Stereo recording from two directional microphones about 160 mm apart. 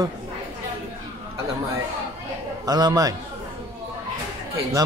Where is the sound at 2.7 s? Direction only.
25° right (ahead or behind).